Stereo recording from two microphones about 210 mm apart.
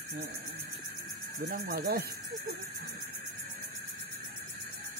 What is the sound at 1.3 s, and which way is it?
Speech, 50° right (ahead or behind).